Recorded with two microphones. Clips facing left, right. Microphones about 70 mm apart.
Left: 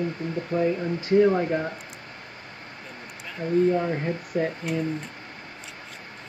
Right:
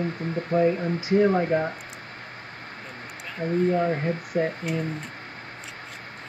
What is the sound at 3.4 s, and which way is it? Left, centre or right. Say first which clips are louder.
Speech: even; right.